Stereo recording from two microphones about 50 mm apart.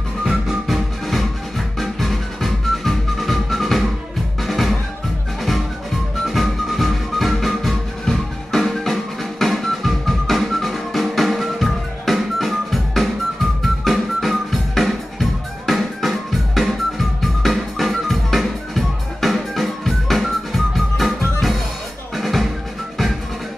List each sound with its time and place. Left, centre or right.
0.2 s music: centre
1.8 s music: centre
6.2 s music: centre